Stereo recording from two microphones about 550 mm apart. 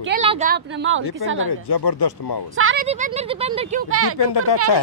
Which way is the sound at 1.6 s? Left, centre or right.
Left.